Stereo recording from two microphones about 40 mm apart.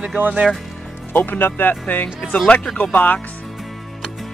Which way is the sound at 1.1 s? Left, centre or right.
Left.